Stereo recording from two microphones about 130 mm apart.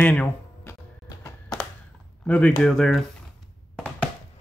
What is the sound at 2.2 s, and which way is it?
Speech, 10° left (ahead or behind).